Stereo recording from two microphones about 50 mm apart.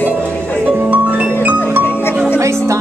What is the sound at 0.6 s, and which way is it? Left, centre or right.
Music, right.